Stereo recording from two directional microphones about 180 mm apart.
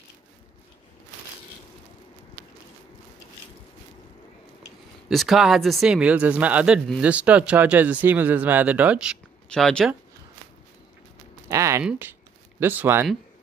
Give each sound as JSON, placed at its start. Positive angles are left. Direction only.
{"t": 5.1, "sound": "speech", "side_deg": 0}
{"t": 11.4, "sound": "a sound", "side_deg": -15}
{"t": 11.8, "sound": "speech", "side_deg": -10}